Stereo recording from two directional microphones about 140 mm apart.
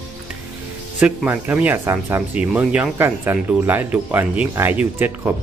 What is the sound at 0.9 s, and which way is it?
Speech, 10° right (ahead or behind).